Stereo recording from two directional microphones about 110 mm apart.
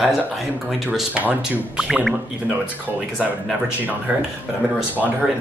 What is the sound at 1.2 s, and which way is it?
Speech, 5° right (ahead or behind).